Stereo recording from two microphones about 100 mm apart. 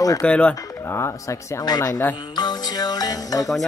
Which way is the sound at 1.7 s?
35° left (ahead or behind).